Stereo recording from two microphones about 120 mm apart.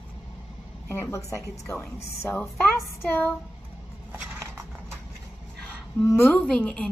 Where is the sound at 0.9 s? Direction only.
20° left (ahead or behind).